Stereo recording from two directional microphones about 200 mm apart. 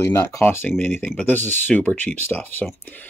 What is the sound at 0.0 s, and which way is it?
Speech, 15° left (ahead or behind).